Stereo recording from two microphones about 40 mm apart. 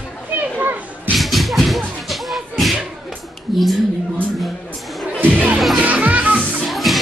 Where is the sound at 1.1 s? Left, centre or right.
Centre.